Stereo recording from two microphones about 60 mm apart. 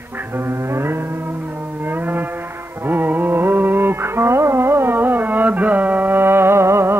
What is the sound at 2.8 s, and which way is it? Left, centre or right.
Carnatic music, right.